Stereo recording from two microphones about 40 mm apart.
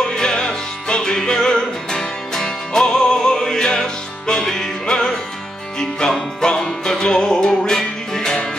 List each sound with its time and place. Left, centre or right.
0.0 s music: centre